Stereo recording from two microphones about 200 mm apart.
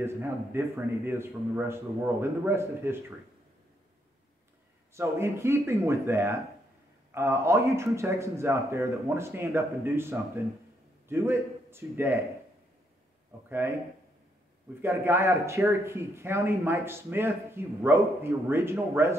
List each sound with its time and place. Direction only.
0.0 s speech: 10° right (ahead or behind)
4.9 s a man's voice: 15° right (ahead or behind)
13.5 s speech: 10° right (ahead or behind)
14.8 s speech: 15° right (ahead or behind)